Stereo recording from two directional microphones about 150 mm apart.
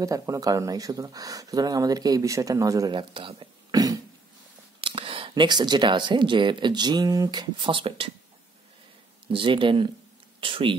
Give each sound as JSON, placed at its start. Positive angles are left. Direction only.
{"t": 0.0, "sound": "speech", "side_deg": -20}
{"t": 4.7, "sound": "speech", "side_deg": -35}
{"t": 9.3, "sound": "speech", "side_deg": -35}